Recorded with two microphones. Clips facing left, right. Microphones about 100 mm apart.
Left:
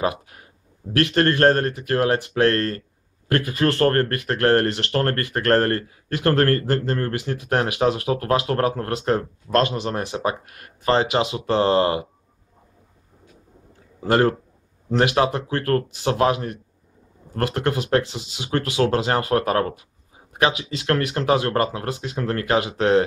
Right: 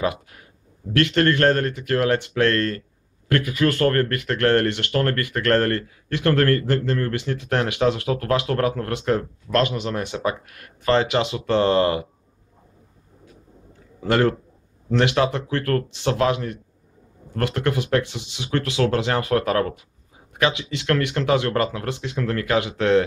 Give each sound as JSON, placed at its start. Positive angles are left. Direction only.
{"t": 0.0, "sound": "speech", "side_deg": 30}
{"t": 15.1, "sound": "speech", "side_deg": 30}